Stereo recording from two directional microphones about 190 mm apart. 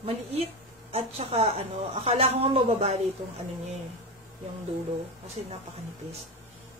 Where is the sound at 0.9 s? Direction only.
35° right (ahead or behind).